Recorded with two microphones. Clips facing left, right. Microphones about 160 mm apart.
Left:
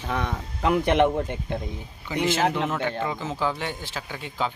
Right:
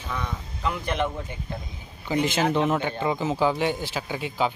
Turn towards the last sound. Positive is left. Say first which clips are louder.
# right 3 dB
turn(degrees=-10)  # may be behind; listen again after turning